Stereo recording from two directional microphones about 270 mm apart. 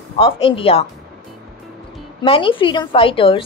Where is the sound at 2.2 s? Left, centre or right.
Centre.